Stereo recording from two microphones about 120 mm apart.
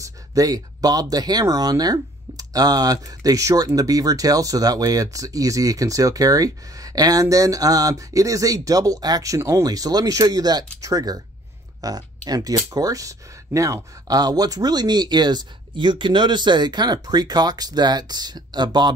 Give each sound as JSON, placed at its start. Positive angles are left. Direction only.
{"t": 0.0, "sound": "speech", "side_deg": -30}